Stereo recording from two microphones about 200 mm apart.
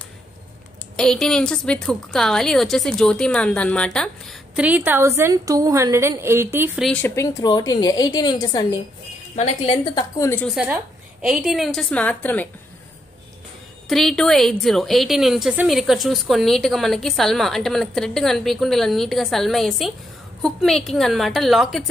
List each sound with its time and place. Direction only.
0.9 s a woman's voice: 5° left (ahead or behind)
6.9 s a woman's voice: 10° left (ahead or behind)
7.7 s a woman's voice: 20° left (ahead or behind)
9.3 s a woman's voice: 35° left (ahead or behind)
9.9 s a woman's voice: 15° left (ahead or behind)
10.5 s a woman's voice: 5° right (ahead or behind)
13.8 s a woman's voice: centre (ahead or behind)